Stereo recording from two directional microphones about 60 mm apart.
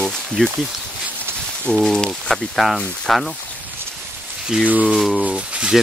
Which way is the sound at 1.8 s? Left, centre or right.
Centre.